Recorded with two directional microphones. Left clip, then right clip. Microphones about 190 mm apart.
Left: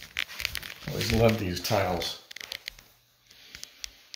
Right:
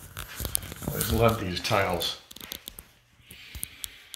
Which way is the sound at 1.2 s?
20° left (ahead or behind).